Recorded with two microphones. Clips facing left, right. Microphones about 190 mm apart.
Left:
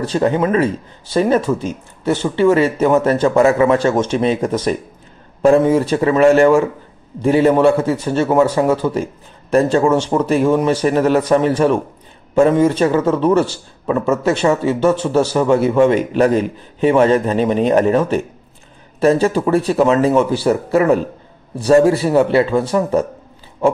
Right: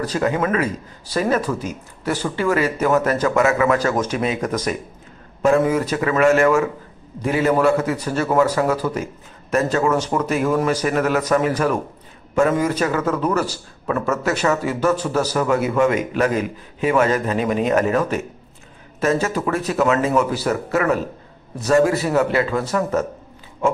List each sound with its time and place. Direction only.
0.0 s a man's voice: 30° left (ahead or behind)